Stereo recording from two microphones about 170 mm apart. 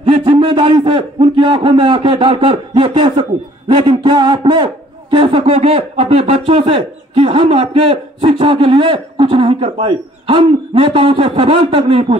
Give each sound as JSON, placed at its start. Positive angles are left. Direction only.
{"t": 0.0, "sound": "speech", "side_deg": -30}